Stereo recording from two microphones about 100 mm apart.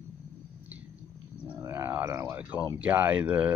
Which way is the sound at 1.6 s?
30° right (ahead or behind).